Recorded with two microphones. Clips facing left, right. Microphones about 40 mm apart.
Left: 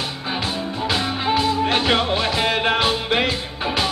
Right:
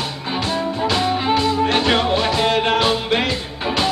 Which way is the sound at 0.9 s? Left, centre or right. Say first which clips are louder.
Right 2 dB; centre.